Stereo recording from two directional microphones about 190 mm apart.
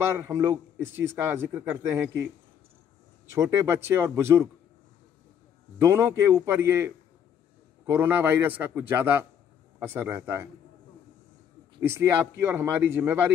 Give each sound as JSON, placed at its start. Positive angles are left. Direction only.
{"t": 0.0, "sound": "a man's voice", "side_deg": -15}
{"t": 3.3, "sound": "a man's voice", "side_deg": -15}
{"t": 5.8, "sound": "a man's voice", "side_deg": -15}
{"t": 11.8, "sound": "a man's voice", "side_deg": -10}